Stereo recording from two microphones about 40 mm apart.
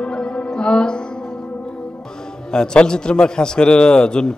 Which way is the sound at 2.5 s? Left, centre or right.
Centre.